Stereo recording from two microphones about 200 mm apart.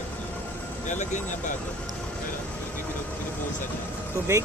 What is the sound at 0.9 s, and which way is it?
Speech, 40° left (ahead or behind).